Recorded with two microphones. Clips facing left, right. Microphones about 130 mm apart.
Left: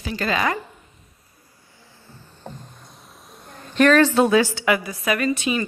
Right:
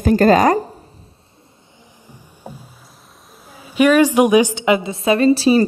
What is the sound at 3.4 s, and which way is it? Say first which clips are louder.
A woman's voice: right 3 dB; 5° right (ahead or behind).